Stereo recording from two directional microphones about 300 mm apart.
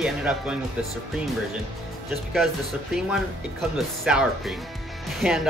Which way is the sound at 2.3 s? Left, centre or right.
Centre.